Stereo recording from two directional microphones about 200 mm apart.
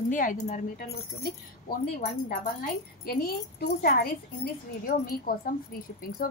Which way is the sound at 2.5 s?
50° left (ahead or behind).